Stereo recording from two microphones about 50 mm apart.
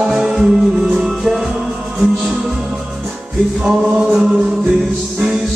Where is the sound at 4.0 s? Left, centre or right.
Right.